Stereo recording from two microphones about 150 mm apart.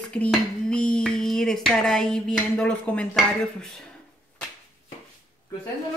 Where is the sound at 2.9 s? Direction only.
10° left (ahead or behind).